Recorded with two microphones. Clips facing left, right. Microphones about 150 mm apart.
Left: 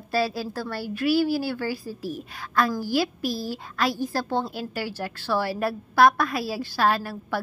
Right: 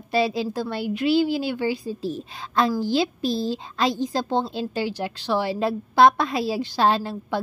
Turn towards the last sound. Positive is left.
turn(degrees=-20)  # may be behind; listen again after turning